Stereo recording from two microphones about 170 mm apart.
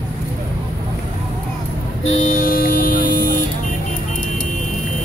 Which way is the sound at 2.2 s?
50° left (ahead or behind).